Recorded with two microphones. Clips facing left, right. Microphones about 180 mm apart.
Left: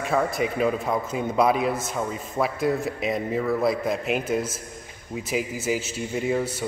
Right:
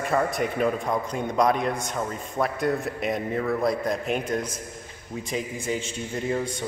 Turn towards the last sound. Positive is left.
turn(degrees=5)  # may be behind; listen again after turning